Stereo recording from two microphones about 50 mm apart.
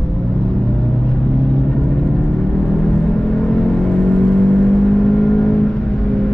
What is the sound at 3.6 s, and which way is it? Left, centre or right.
Vehicle, centre.